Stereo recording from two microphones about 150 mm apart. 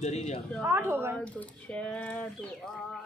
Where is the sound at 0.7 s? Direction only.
15° right (ahead or behind).